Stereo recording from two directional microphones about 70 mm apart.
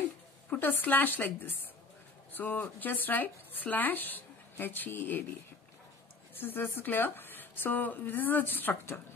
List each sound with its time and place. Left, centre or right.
0.5 s speech: left
6.3 s speech: left